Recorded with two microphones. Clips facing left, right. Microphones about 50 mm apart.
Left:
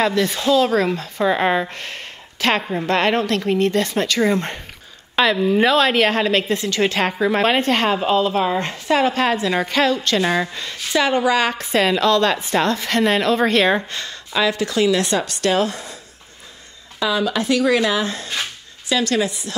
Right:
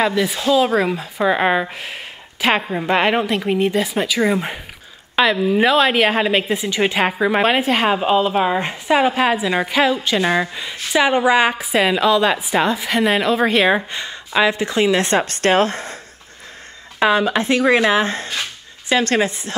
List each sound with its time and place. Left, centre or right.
0.0 s a woman's voice: centre; by 16.0 s right
17.0 s speech: right